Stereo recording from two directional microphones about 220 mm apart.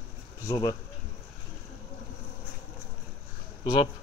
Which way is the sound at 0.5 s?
20° left (ahead or behind).